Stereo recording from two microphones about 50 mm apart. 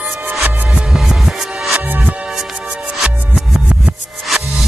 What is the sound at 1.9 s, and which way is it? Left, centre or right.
Music, right.